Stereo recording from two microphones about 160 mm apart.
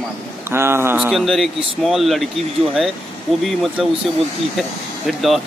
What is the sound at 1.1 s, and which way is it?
Speech, centre (ahead or behind).